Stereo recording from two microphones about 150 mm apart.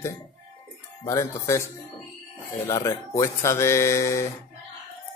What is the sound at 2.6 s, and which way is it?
Speech, 20° left (ahead or behind).